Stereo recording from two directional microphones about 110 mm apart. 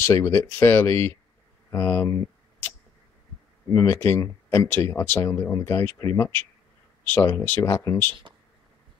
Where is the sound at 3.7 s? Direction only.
30° left (ahead or behind).